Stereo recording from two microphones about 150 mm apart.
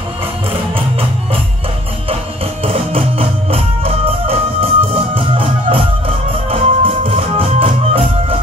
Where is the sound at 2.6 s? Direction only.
40° right (ahead or behind).